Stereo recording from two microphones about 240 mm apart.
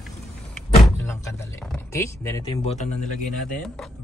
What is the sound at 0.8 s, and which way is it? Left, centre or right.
Speech, centre.